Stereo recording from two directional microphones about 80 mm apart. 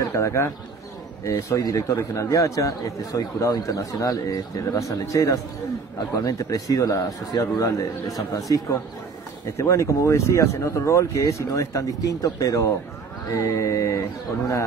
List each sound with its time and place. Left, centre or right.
0.0 s speech: left
1.6 s a man's voice: left
4.7 s a man's voice: left